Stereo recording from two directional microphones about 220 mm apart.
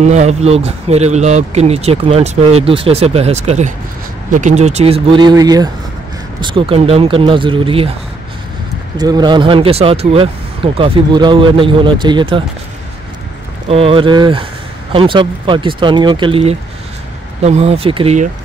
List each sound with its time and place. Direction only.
0.0 s speech: 30° right (ahead or behind)
8.9 s speech: 20° right (ahead or behind)
13.7 s speech: 25° right (ahead or behind)